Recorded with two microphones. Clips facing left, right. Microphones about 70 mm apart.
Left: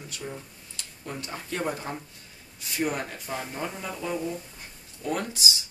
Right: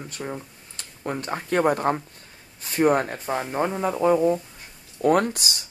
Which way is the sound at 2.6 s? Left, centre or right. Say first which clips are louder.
Right 9 dB; right.